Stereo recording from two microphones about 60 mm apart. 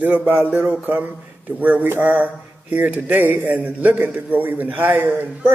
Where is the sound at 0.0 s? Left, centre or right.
Right.